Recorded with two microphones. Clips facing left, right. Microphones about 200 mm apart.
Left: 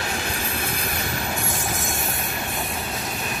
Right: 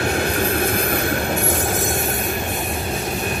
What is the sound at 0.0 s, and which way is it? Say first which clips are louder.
Train: right 9 dB; 60° right (ahead or behind).